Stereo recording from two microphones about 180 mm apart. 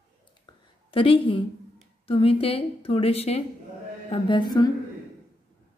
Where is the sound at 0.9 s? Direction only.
30° left (ahead or behind).